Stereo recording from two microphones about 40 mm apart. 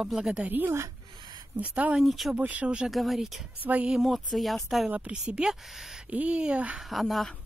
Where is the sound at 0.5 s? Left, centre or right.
Right.